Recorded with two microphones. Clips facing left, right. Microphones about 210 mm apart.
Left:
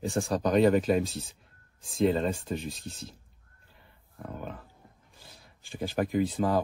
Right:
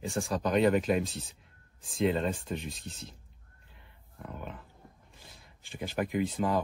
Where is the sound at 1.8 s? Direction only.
Centre (ahead or behind).